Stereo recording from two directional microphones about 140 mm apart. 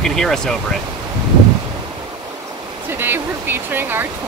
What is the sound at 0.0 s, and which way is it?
Speech, 5° left (ahead or behind).